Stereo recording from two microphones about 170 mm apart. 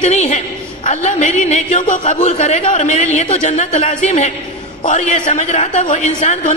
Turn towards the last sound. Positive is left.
turn(degrees=45)  # may be behind; listen again after turning